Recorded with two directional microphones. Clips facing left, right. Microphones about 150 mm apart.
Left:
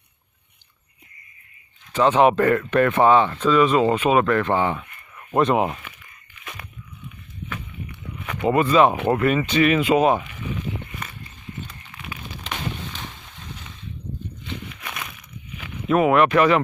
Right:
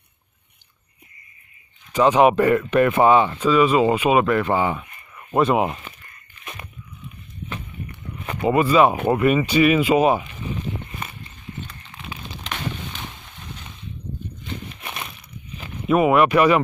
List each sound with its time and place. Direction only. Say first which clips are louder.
1.9 s speech: right 1 dB; 15° right (ahead or behind)
8.5 s speech: right 1 dB; 10° right (ahead or behind)
14.5 s a sound: right 1 dB; 30° right (ahead or behind)
15.9 s speech: right 1 dB; 10° right (ahead or behind)